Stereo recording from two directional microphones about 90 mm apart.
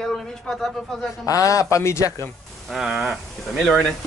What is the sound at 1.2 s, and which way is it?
Speech, 35° left (ahead or behind).